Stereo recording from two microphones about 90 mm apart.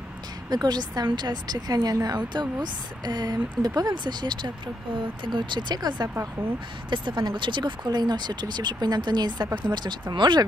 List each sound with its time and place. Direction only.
0.5 s a woman's voice: 50° right (ahead or behind)